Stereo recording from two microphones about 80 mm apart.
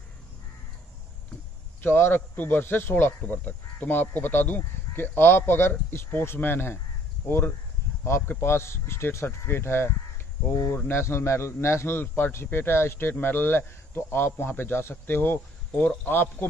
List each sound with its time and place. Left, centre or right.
1.8 s a man's voice: left